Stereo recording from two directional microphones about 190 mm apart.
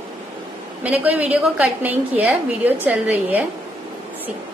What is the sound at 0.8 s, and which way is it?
A woman's voice, 10° right (ahead or behind).